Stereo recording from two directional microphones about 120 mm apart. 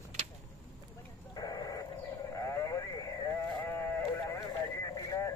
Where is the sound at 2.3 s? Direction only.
25° left (ahead or behind).